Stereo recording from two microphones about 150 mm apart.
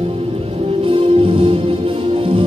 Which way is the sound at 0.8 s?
35° right (ahead or behind).